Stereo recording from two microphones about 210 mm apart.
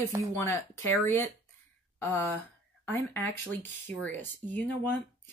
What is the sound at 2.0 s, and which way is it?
Speech, 10° left (ahead or behind).